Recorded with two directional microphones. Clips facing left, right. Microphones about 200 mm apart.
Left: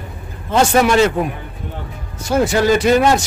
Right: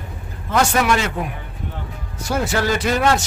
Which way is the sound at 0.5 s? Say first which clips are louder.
Left 5 dB; 30° left (ahead or behind).